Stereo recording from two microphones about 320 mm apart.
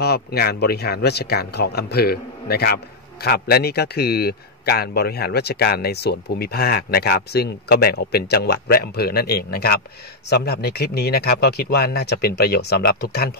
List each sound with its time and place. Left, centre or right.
0.0 s speech: left